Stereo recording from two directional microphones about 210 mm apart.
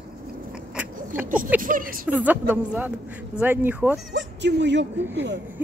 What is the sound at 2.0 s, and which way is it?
A woman's voice, 10° right (ahead or behind).